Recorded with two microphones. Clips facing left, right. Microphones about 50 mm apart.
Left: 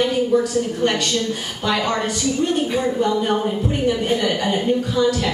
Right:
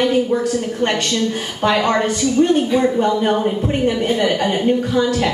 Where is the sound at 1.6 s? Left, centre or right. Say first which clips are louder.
Right 5 dB; right.